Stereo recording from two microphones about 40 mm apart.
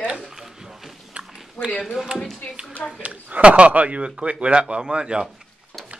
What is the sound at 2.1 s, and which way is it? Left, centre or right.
Speech, right.